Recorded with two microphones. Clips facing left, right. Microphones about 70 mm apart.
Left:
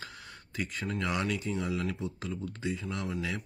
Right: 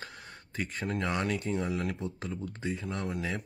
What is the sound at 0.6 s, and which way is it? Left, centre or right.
Speech, right.